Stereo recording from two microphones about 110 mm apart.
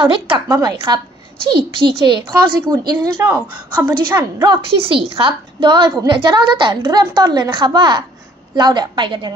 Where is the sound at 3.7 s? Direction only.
35° right (ahead or behind).